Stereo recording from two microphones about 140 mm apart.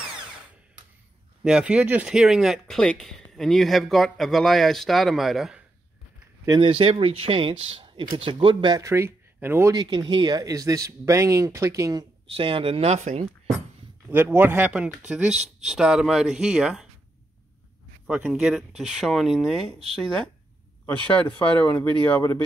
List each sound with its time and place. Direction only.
1.4 s speech: 5° right (ahead or behind)
6.6 s speech: 40° right (ahead or behind); by 9.8 s 15° right (ahead or behind)
9.8 s speech: 30° right (ahead or behind)
12.3 s speech: 40° right (ahead or behind)
14.0 s speech: 15° right (ahead or behind)
18.0 s speech: 5° right (ahead or behind); by 22.4 s 15° left (ahead or behind)